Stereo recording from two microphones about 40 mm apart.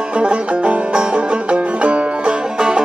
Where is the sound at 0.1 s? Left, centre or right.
Right.